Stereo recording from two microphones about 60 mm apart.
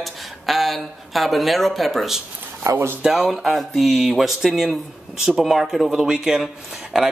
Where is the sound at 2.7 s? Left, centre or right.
Right.